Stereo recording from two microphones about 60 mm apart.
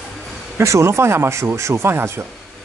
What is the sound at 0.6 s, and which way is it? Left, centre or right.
Speech, right.